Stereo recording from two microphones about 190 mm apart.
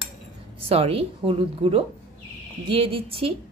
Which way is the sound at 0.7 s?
30° right (ahead or behind).